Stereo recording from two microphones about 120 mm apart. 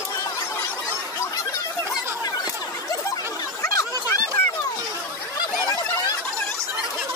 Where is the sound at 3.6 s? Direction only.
30° left (ahead or behind).